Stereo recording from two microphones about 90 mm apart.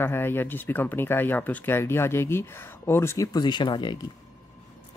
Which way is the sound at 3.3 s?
55° left (ahead or behind).